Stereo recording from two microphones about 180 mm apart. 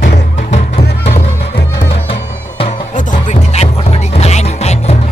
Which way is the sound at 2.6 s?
40° left (ahead or behind).